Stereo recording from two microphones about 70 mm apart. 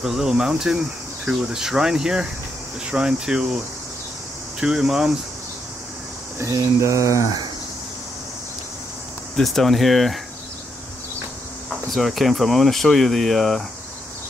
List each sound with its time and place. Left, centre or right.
0.0 s speech: centre
4.6 s speech: centre
6.4 s speech: right
9.4 s speech: centre
11.9 s speech: centre